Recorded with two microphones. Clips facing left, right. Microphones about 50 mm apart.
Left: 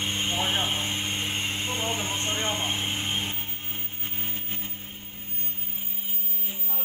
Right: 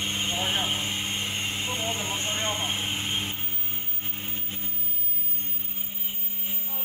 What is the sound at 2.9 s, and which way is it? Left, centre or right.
Vehicle, centre.